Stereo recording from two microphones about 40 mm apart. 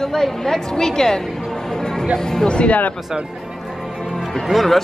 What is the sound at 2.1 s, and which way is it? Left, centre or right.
Speech, centre.